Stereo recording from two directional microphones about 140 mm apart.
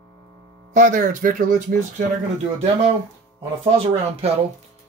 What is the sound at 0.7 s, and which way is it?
Speech, 65° right (ahead or behind).